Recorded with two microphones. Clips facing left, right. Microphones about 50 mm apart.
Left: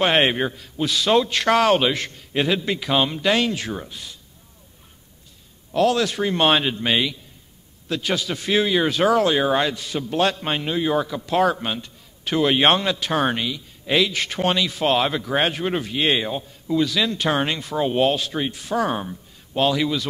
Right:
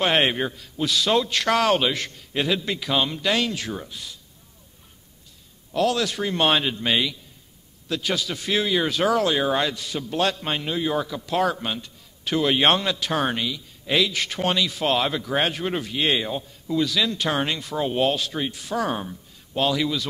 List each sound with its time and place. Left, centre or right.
0.0 s a man's voice: left
5.7 s a man's voice: left